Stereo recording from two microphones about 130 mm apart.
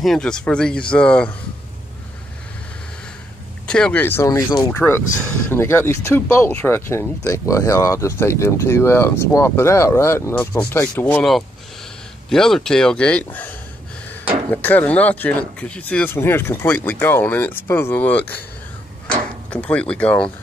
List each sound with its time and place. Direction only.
0.0 s speech: 5° left (ahead or behind)
3.6 s speech: 5° left (ahead or behind); by 4.7 s 30° left (ahead or behind)
4.7 s speech: 15° left (ahead or behind)
12.3 s speech: 5° left (ahead or behind)